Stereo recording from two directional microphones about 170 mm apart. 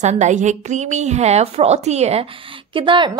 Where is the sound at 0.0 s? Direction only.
45° right (ahead or behind).